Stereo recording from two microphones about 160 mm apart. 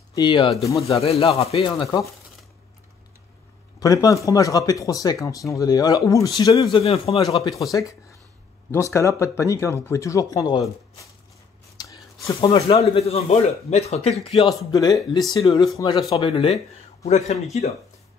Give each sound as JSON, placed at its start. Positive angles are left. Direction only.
{"t": 0.1, "sound": "speech", "side_deg": 30}
{"t": 0.8, "sound": "speech", "side_deg": 40}
{"t": 3.8, "sound": "speech", "side_deg": 20}
{"t": 6.8, "sound": "speech", "side_deg": 40}
{"t": 7.2, "sound": "speech", "side_deg": 25}
{"t": 8.7, "sound": "speech", "side_deg": 20}
{"t": 11.7, "sound": "a sound", "side_deg": 25}
{"t": 12.4, "sound": "speech", "side_deg": 35}
{"t": 14.7, "sound": "a man's voice", "side_deg": 25}